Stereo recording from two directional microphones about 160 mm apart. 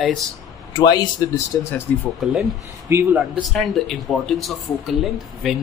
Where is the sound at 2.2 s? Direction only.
Centre (ahead or behind).